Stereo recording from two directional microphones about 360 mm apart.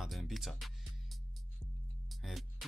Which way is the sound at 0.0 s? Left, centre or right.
Centre.